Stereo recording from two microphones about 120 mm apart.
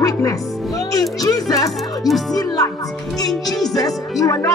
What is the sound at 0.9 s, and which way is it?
Music, 30° left (ahead or behind).